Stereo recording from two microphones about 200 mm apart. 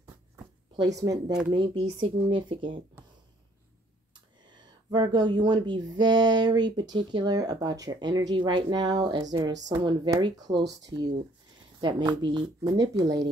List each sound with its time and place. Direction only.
0.9 s speech: 15° right (ahead or behind)
4.9 s speech: 20° right (ahead or behind)
11.8 s speech: 25° right (ahead or behind)